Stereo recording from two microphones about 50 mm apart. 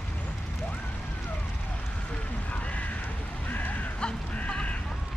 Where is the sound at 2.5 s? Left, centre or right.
Left.